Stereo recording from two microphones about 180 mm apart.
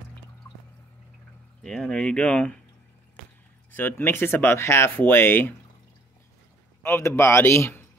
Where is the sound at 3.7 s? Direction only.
10° left (ahead or behind).